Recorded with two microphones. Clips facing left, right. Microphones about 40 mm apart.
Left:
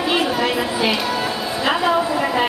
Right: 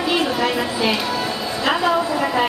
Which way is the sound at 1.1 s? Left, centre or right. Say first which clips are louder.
Left 1 dB; centre.